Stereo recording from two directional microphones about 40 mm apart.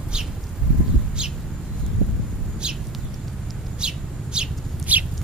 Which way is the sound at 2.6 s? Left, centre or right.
Right.